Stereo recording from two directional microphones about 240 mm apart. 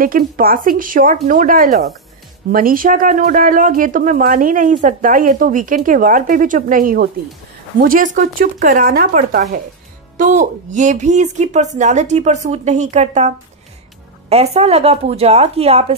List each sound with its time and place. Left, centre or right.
0.0 s speech: right
14.3 s speech: right